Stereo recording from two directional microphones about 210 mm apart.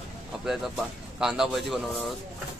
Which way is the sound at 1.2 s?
Centre (ahead or behind).